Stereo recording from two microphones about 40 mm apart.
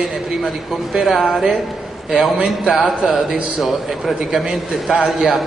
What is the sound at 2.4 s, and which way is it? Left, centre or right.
A man's voice, centre.